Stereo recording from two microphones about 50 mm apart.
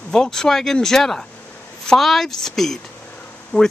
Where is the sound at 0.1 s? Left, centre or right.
Centre.